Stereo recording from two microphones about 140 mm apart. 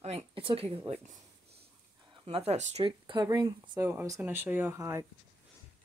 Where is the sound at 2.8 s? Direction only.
30° right (ahead or behind).